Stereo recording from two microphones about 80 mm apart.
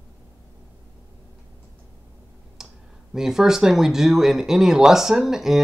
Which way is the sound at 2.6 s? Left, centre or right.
Centre.